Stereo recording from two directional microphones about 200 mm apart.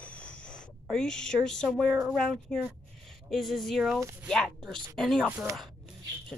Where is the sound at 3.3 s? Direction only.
Centre (ahead or behind).